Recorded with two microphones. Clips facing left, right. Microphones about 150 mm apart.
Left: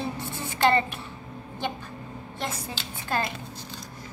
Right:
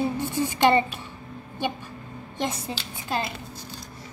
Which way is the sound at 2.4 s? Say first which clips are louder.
Right 5 dB; 15° right (ahead or behind).